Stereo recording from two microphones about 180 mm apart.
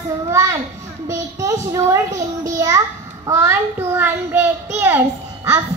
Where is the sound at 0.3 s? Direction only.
15° right (ahead or behind).